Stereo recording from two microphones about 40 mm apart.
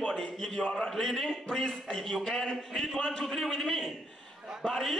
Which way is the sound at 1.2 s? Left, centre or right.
Left.